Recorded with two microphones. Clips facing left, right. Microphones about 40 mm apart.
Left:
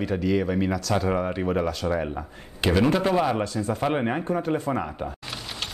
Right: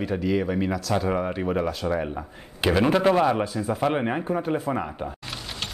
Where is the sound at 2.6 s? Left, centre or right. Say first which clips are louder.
Right 2 dB; centre.